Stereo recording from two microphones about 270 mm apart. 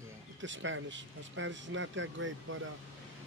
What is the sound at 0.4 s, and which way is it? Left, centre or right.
Speech, right.